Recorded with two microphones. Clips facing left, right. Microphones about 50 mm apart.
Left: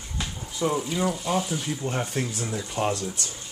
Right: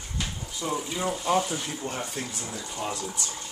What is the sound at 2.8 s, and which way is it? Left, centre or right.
Speech, left.